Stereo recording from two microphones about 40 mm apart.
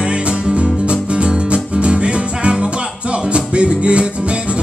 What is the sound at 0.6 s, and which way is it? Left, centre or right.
Music, right.